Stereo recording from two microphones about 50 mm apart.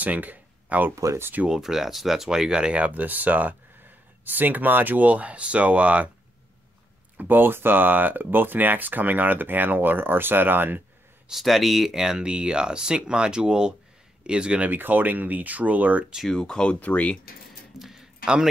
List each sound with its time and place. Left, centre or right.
0.0 s speech: right
0.9 s speech: right
1.5 s speech: centre
2.8 s speech: right
7.2 s speech: right
11.2 s speech: centre
14.6 s speech: right
16.3 s speech: centre
16.8 s speech: left
17.7 s a sound: centre